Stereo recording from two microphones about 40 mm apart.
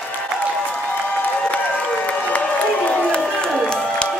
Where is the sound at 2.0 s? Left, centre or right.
Left.